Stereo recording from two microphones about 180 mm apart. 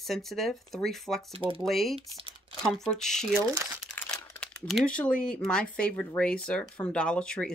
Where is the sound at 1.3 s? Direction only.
30° right (ahead or behind).